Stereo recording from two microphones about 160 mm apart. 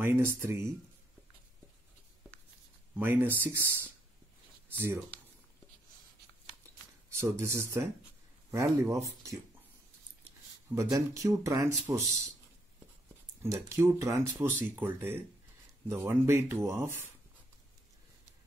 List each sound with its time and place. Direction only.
0.0 s speech: 15° right (ahead or behind)
3.0 s speech: 15° right (ahead or behind)
7.2 s speech: 15° right (ahead or behind)
10.7 s speech: 15° right (ahead or behind)
13.4 s speech: 15° right (ahead or behind)